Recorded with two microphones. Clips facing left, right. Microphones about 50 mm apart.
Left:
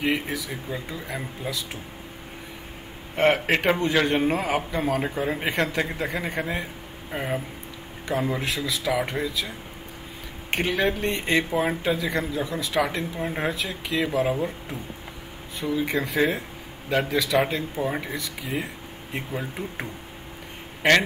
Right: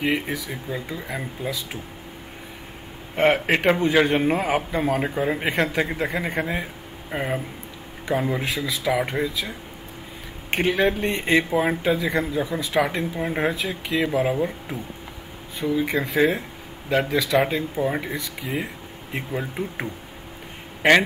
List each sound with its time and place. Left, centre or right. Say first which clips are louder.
0.0 s a man's voice: right 1 dB; centre
3.2 s a man's voice: right 1 dB; centre
10.5 s a man's voice: right 3 dB; centre